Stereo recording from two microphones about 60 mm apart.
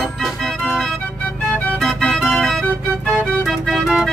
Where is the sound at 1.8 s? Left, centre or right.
Centre.